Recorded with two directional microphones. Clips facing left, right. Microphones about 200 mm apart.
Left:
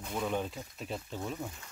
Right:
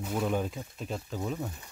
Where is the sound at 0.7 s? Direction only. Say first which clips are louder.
Right 3 dB; centre (ahead or behind).